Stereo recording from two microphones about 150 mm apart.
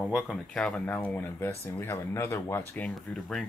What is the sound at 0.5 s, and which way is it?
Speech, 5° left (ahead or behind).